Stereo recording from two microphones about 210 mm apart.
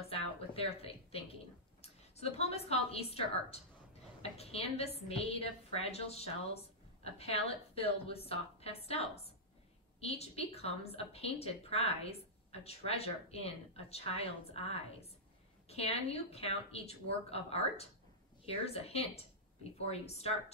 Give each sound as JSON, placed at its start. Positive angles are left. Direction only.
{"t": 0.1, "sound": "a woman's voice", "side_deg": 30}